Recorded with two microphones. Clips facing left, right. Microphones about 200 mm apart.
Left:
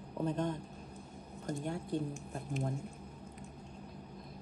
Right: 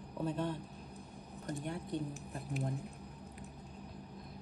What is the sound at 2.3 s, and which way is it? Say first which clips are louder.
Speech: left 1 dB; centre (ahead or behind).